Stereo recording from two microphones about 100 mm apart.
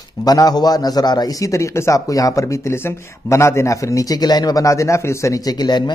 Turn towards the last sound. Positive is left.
turn(degrees=45)  # may be behind; listen again after turning